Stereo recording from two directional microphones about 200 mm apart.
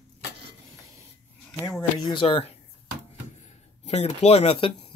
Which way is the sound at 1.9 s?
25° left (ahead or behind).